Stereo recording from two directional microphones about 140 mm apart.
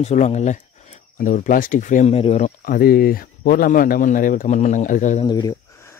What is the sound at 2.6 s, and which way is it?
Speech, 90° left.